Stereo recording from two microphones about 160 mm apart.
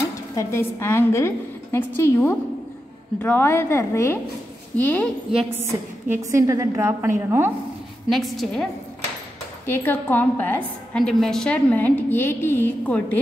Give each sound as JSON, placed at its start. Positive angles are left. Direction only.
{"t": 0.4, "sound": "a woman's voice", "side_deg": 15}
{"t": 5.6, "sound": "a woman's voice", "side_deg": -15}
{"t": 8.1, "sound": "a woman's voice", "side_deg": 0}
{"t": 9.7, "sound": "a woman's voice", "side_deg": 10}